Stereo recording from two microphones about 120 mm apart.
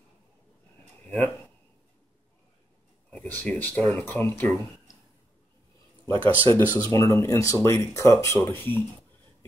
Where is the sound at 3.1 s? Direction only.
10° left (ahead or behind).